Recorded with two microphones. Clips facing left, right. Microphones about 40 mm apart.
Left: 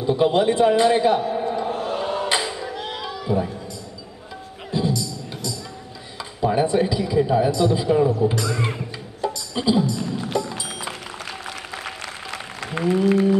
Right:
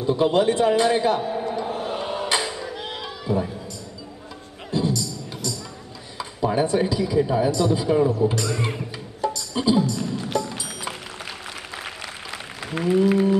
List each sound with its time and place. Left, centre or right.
0.0 s a man's voice: centre
1.2 s a sound: centre
1.8 s chant: centre
2.3 s a sound: centre
6.4 s a sound: centre
6.9 s a man's voice: centre
7.2 s speech: centre
7.5 s a man's voice: centre
7.8 s music: centre
11.7 s applause: centre